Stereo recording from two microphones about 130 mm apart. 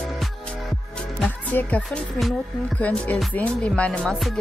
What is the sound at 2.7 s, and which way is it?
Speech, 10° left (ahead or behind).